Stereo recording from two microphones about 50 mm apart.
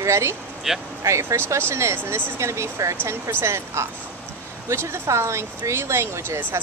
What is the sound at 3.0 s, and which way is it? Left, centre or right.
Speech, right.